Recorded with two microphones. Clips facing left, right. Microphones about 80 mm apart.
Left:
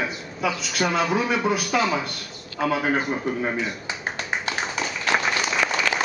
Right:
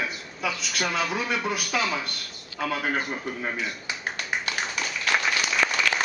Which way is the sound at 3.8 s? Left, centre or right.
Left.